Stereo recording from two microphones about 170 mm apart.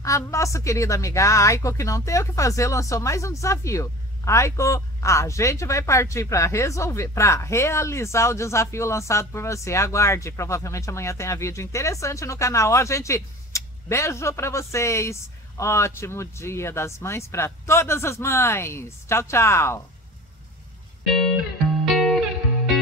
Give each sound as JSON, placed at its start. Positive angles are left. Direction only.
{"t": 0.0, "sound": "a woman's voice", "side_deg": 20}
{"t": 21.9, "sound": "music", "side_deg": 0}